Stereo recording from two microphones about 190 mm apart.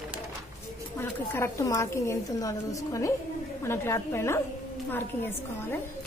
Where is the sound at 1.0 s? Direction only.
15° left (ahead or behind).